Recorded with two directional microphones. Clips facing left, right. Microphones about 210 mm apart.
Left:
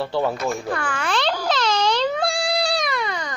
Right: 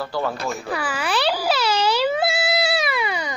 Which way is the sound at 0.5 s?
5° right (ahead or behind).